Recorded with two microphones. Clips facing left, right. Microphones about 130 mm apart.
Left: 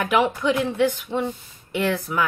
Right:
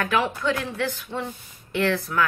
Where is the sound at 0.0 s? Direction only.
15° left (ahead or behind).